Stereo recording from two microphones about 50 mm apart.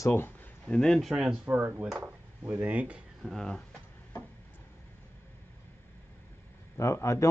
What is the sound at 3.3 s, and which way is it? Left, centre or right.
Speech, centre.